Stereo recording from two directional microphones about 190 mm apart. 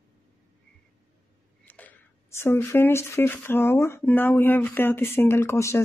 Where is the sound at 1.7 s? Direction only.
10° left (ahead or behind).